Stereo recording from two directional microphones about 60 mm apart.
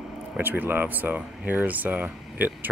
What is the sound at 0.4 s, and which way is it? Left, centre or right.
Speech, right.